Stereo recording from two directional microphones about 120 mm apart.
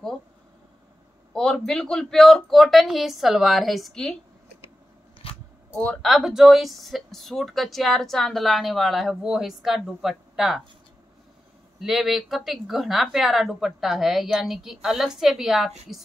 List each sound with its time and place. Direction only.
1.3 s speech: 5° left (ahead or behind)
5.2 s biting: 50° left (ahead or behind)
6.0 s speech: centre (ahead or behind)
11.8 s speech: centre (ahead or behind)